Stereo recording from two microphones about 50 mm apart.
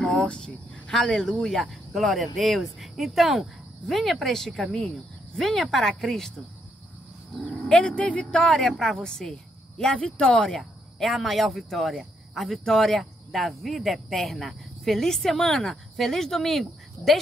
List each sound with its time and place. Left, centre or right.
0.0 s speech: centre
7.6 s speech: centre
10.4 s speech: centre